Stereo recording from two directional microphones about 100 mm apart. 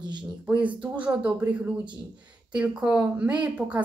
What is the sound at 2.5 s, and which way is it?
Speech, 10° right (ahead or behind).